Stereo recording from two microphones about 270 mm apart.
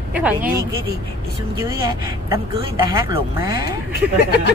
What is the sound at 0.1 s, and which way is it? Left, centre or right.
Speech, centre.